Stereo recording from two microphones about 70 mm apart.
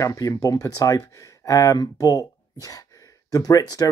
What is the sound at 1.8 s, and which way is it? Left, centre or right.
Speech, left.